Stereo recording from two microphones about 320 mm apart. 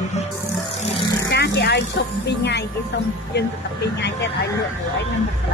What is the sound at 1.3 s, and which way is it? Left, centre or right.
Speech, left.